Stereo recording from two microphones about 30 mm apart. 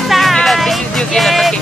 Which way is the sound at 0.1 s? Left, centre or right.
Centre.